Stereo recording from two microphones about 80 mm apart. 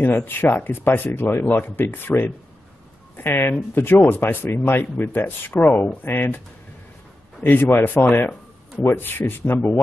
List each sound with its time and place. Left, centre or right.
0.0 s speech: left
7.4 s speech: left